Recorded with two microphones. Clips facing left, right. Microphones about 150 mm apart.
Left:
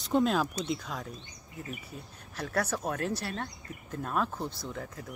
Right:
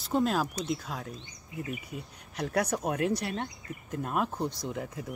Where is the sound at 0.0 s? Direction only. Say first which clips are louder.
Left 1 dB; 5° right (ahead or behind).